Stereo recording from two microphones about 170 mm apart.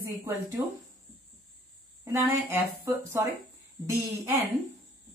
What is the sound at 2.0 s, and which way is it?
Speech, 15° right (ahead or behind).